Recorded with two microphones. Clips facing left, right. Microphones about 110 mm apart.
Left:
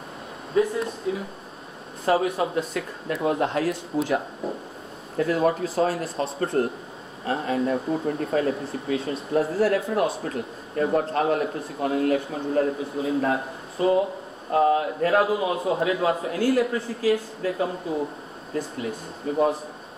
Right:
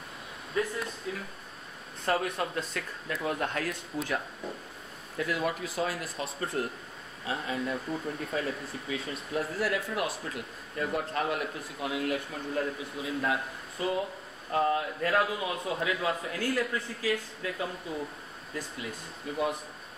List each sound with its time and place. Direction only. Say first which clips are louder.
0.6 s speech: left 9 dB; 30° left (ahead or behind)
2.2 s speech: left 8 dB; 5° left (ahead or behind)
2.7 s a man's voice: left 7 dB; 30° left (ahead or behind)